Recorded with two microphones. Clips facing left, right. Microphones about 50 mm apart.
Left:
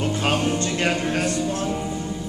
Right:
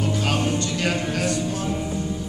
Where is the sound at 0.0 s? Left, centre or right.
Left.